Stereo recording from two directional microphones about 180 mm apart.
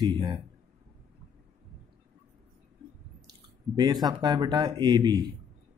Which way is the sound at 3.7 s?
20° right (ahead or behind).